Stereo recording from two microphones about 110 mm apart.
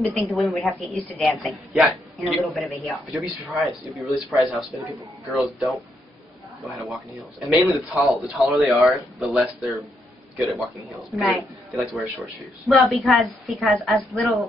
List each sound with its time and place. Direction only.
0.3 s a woman's voice: centre (ahead or behind)